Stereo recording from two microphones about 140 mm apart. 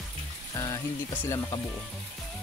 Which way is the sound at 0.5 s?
20° left (ahead or behind).